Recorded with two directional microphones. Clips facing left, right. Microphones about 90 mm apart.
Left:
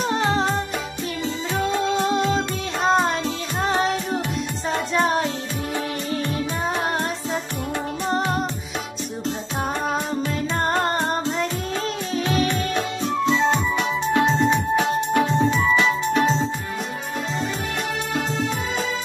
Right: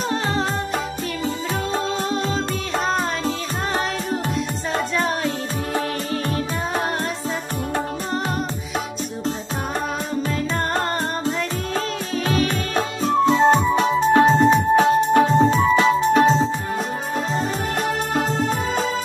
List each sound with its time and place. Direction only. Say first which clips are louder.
0.1 s music: left 2 dB; 25° left (ahead or behind)
1.7 s music: left 3 dB; 35° right (ahead or behind)
2.3 s music: right 1 dB; 35° left (ahead or behind)
4.9 s music: left 4 dB; 30° left (ahead or behind)
11.7 s music: right 1 dB; 35° right (ahead or behind)
18.1 s music: right 2 dB; 40° right (ahead or behind)